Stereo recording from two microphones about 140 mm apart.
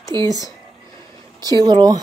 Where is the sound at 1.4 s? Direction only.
30° right (ahead or behind).